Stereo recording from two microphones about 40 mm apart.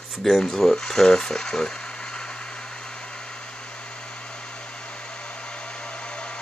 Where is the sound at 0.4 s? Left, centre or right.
Centre.